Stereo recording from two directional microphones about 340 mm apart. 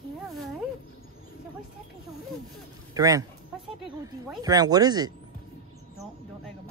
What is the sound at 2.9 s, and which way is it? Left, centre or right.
Speech, centre.